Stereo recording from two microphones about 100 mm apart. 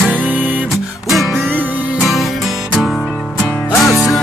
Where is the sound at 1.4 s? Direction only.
15° right (ahead or behind).